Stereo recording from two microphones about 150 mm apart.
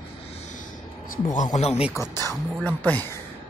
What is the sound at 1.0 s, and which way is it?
Speech, 65° left (ahead or behind).